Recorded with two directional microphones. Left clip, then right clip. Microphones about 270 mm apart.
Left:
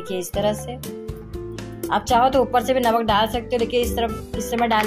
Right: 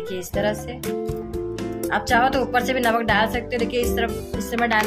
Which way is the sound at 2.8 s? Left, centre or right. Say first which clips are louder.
Left 1 dB; centre.